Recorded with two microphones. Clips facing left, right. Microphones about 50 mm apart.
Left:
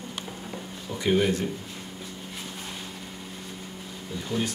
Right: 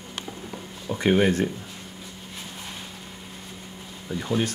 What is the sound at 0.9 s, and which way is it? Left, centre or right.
Speech, right.